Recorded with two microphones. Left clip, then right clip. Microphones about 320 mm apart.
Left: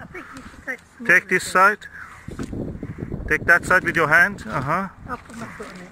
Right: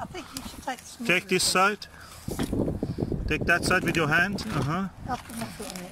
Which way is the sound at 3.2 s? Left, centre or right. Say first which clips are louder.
Left 8 dB; centre.